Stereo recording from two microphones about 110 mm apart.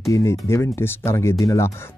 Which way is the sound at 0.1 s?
25° left (ahead or behind).